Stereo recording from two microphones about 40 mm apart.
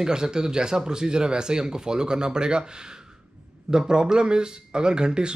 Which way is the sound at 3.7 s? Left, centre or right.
Centre.